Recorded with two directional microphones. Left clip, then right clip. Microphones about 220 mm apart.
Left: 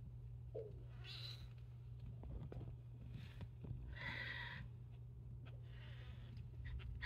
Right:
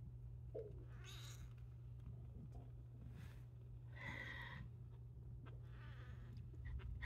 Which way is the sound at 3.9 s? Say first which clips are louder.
Left 4 dB; 20° right (ahead or behind).